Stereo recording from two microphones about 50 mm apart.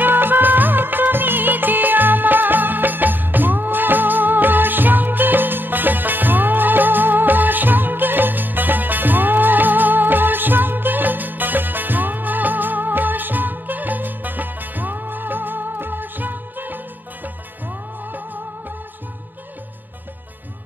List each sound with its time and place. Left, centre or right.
0.0 s music of bollywood: right